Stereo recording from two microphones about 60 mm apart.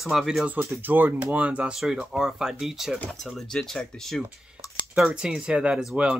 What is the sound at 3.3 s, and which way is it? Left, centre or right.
Speech, centre.